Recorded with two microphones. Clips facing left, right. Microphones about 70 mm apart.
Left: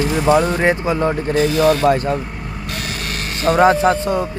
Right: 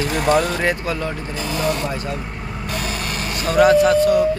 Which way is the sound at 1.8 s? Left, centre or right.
Left.